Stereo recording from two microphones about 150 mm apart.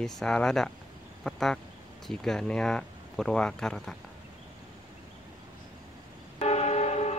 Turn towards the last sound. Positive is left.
turn(degrees=50)  # may be behind; listen again after turning